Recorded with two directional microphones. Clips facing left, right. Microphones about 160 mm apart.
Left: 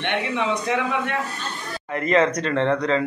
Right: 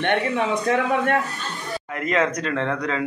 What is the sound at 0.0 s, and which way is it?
A man's voice, 50° right (ahead or behind).